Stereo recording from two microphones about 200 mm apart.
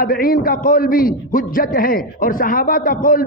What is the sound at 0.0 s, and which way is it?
A man's voice, 45° left (ahead or behind).